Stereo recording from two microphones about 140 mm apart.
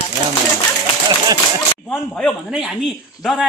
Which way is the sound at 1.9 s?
Centre (ahead or behind).